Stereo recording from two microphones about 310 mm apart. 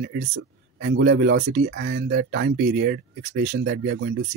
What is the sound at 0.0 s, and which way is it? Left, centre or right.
Speech, right.